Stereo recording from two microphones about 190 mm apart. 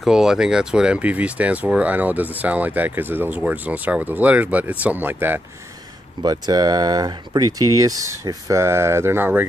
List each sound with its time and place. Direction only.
0.0 s speech: 5° right (ahead or behind)
6.2 s speech: 20° right (ahead or behind)